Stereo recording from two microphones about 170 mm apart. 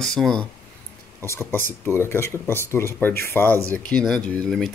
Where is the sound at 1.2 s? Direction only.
15° left (ahead or behind).